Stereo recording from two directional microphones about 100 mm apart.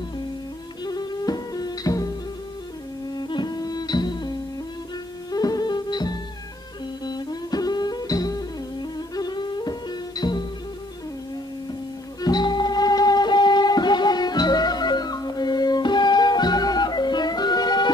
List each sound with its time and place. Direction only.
0.8 s music: 45° left (ahead or behind)
3.2 s music: 50° left (ahead or behind)
5.3 s music: 40° left (ahead or behind)
12.2 s music: 45° left (ahead or behind)